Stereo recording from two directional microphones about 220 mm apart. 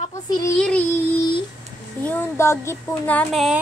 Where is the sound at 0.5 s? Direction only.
5° left (ahead or behind).